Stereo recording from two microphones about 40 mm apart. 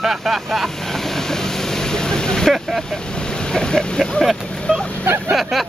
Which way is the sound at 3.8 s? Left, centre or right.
Centre.